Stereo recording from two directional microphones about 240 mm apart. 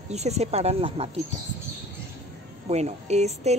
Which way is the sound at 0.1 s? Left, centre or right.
Right.